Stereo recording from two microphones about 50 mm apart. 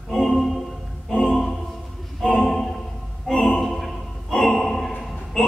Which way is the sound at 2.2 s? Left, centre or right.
Centre.